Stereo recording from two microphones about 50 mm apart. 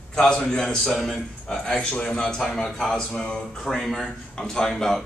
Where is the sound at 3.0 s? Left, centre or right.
Centre.